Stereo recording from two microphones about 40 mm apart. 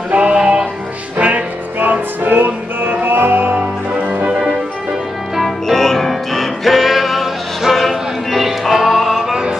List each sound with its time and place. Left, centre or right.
0.1 s music: right
1.1 s music: right
3.5 s music: right
5.7 s music: centre
9.3 s music: centre